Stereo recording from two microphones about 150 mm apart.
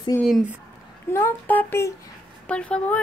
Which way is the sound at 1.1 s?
15° left (ahead or behind).